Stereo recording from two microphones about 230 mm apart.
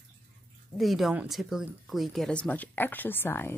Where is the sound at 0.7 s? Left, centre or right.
Centre.